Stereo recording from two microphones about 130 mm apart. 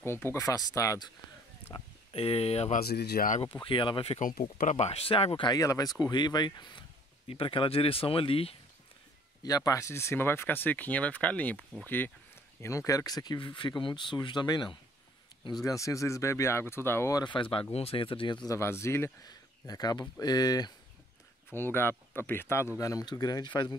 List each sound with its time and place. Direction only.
0.0 s speech: 20° left (ahead or behind)
1.7 s speech: 35° left (ahead or behind)
2.1 s speech: 50° left (ahead or behind)
2.7 s speech: 75° left (ahead or behind)
3.4 s speech: 40° left (ahead or behind)
4.2 s speech: 85° left; by 5.5 s 45° left (ahead or behind)
5.5 s speech: 30° left (ahead or behind); by 8.5 s 45° left (ahead or behind)
9.4 s speech: 30° left (ahead or behind)
12.6 s speech: 25° left (ahead or behind)
15.6 s speech: 25° left (ahead or behind)
17.2 s speech: 40° left (ahead or behind)
18.5 s speech: 20° left (ahead or behind)
19.2 s speech: 30° left (ahead or behind)
21.5 s speech: 15° left (ahead or behind); by 23.8 s 35° left (ahead or behind)